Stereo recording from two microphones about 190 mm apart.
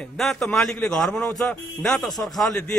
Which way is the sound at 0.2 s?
5° left (ahead or behind).